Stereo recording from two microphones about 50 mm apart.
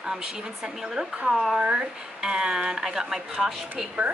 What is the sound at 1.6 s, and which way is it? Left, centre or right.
A woman's voice, centre.